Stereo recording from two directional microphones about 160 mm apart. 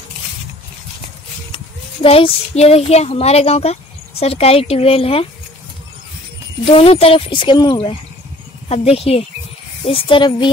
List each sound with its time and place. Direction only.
2.0 s speech: 35° left (ahead or behind)
6.6 s speech: 35° left (ahead or behind)